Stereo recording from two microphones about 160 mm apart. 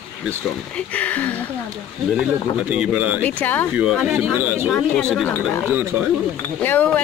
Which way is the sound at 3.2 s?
10° left (ahead or behind).